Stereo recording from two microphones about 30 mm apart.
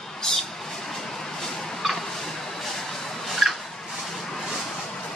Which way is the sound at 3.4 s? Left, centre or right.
Centre.